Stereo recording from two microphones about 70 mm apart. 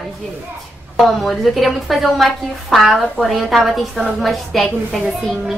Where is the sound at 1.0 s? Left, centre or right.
Centre.